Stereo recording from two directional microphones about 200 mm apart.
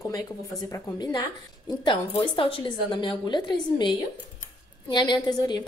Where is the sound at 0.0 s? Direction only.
20° left (ahead or behind).